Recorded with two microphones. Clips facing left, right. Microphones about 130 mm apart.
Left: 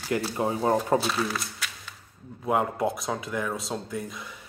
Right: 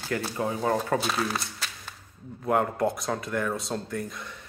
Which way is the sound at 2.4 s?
5° left (ahead or behind).